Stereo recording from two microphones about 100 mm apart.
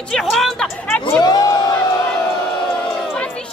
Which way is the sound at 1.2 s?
40° left (ahead or behind).